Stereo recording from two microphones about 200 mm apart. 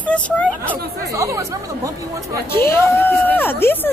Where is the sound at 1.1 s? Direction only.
15° right (ahead or behind).